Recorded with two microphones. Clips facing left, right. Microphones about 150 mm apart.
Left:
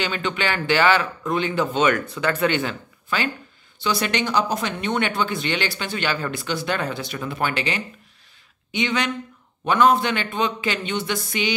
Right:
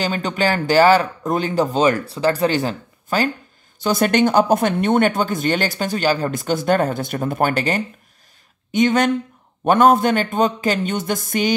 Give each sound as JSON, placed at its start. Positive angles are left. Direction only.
{"t": 0.0, "sound": "speech", "side_deg": -40}